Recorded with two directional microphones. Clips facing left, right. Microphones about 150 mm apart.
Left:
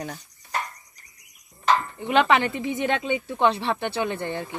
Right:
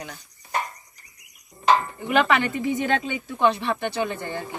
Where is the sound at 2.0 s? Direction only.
25° left (ahead or behind).